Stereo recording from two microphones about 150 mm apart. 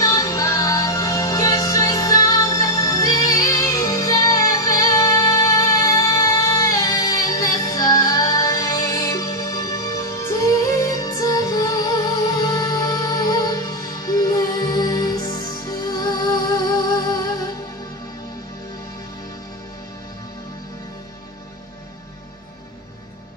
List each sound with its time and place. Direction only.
0.0 s music: 20° left (ahead or behind)